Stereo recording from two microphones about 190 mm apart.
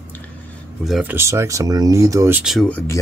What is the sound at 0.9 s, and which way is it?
Speech, 5° right (ahead or behind).